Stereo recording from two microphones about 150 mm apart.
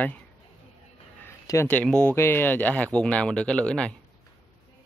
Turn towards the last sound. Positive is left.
turn(degrees=5)  # may be behind; listen again after turning